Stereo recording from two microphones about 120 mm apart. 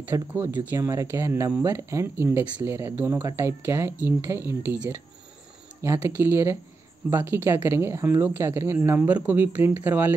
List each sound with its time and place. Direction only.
0.1 s speech: 20° right (ahead or behind)